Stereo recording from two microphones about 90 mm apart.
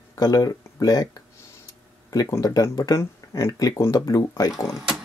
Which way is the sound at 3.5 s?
45° left (ahead or behind).